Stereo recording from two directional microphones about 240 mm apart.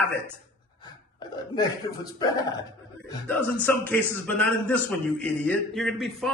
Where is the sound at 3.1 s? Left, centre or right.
Centre.